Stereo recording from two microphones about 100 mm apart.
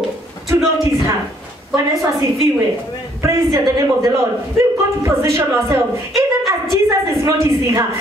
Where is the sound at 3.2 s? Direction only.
30° right (ahead or behind).